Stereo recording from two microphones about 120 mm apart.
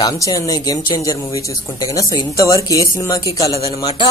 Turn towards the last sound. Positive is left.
turn(degrees=25)  # may be behind; listen again after turning